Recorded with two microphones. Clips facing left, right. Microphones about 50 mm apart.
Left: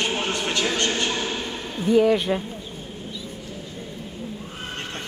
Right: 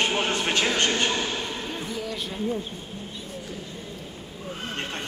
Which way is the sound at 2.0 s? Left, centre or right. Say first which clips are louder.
Left 13 dB; left.